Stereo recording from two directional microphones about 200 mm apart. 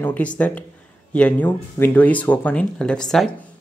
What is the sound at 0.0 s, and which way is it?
Speech, 5° left (ahead or behind).